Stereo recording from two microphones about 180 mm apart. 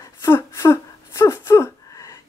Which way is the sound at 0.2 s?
15° left (ahead or behind).